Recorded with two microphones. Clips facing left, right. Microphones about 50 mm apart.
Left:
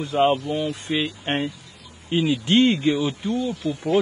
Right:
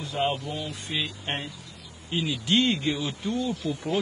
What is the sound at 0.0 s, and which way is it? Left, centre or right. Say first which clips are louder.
A man's voice: left 8 dB; left.